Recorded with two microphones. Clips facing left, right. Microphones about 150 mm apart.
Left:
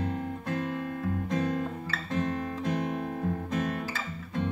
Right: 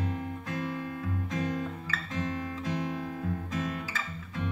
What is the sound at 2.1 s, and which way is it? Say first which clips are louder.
Guitar: left 4 dB; 55° left (ahead or behind).